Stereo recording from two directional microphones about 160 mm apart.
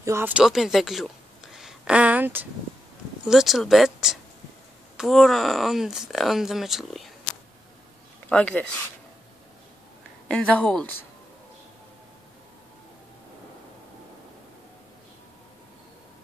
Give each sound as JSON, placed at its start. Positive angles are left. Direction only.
{"t": 0.0, "sound": "speech", "side_deg": -15}
{"t": 0.3, "sound": "speech", "side_deg": -5}
{"t": 8.3, "sound": "a woman's voice", "side_deg": 5}
{"t": 10.2, "sound": "a woman's voice", "side_deg": 5}